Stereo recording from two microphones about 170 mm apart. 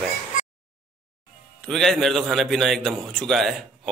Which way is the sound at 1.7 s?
Centre (ahead or behind).